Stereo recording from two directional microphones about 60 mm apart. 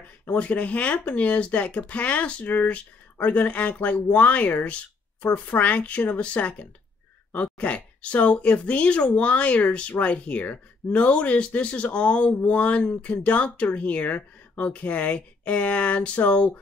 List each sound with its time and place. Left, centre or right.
0.3 s speech: left